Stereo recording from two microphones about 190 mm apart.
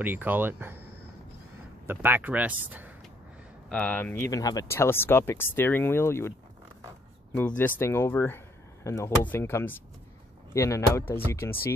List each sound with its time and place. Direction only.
0.0 s speech: 10° right (ahead or behind)
1.9 s speech: 10° right (ahead or behind)
3.6 s speech: 5° left (ahead or behind)
7.3 s speech: 10° left (ahead or behind)